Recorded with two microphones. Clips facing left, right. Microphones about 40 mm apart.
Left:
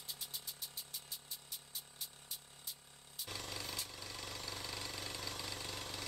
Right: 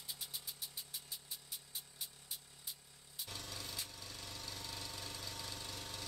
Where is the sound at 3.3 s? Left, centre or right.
Left.